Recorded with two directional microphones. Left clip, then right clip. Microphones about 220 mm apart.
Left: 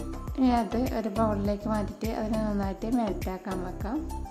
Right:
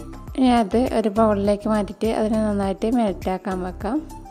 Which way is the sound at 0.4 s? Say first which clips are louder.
Right 8 dB; 40° right (ahead or behind).